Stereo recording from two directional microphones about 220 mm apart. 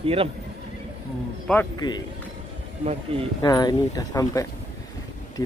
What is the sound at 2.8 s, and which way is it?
Speech, 25° right (ahead or behind).